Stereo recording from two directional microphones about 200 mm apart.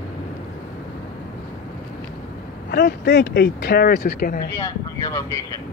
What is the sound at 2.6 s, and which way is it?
Speech, 55° left (ahead or behind).